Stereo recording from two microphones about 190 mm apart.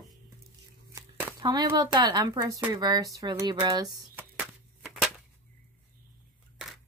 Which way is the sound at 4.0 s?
5° right (ahead or behind).